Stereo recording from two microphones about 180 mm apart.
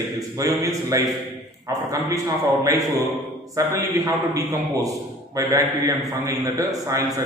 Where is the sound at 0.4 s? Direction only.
20° right (ahead or behind).